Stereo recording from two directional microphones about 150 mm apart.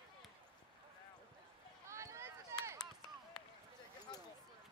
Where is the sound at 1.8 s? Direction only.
20° right (ahead or behind).